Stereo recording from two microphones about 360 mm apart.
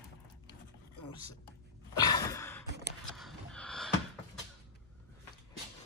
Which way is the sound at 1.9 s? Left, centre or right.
Centre.